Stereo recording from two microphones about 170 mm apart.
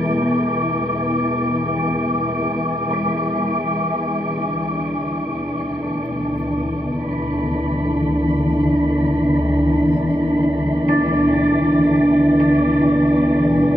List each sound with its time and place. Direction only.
0.1 s music: 20° right (ahead or behind)
8.8 s music: 20° right (ahead or behind)
11.0 s music: 20° right (ahead or behind)